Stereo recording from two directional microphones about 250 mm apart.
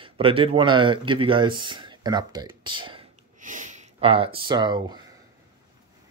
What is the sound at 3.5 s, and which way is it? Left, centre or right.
Speech, right.